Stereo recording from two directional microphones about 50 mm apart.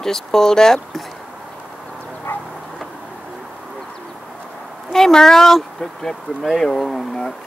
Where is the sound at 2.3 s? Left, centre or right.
Left.